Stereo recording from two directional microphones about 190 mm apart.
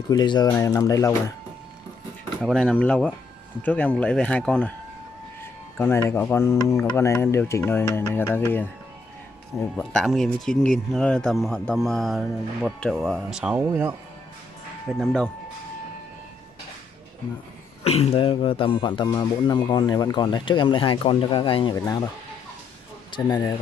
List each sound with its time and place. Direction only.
0.1 s speech: 20° left (ahead or behind)
2.4 s speech: 5° left (ahead or behind)
5.8 s speech: 15° left (ahead or behind); by 13.9 s 10° right (ahead or behind)
15.0 s speech: 5° left (ahead or behind)
17.8 s speech: 30° left (ahead or behind)
23.1 s speech: 25° left (ahead or behind)